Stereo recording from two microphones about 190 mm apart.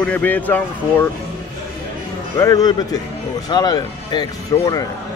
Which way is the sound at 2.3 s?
15° left (ahead or behind).